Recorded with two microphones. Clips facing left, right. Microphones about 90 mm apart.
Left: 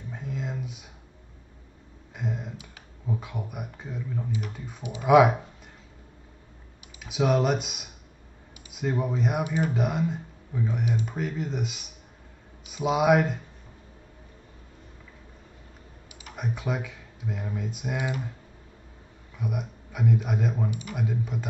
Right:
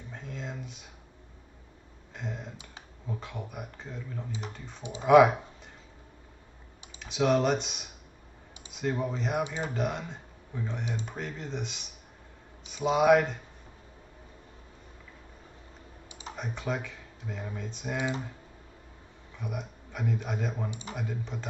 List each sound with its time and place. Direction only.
0.1 s a sound: 5° left (ahead or behind)
2.1 s a sound: 5° left (ahead or behind)
3.1 s speech: 10° left (ahead or behind)
7.0 s speech: 5° left (ahead or behind)
9.4 s speech: 25° right (ahead or behind)
9.8 s speech: 10° left (ahead or behind)
16.1 s computer keyboard: 25° right (ahead or behind)
16.3 s speech: 5° left (ahead or behind)
19.3 s speech: 5° left (ahead or behind)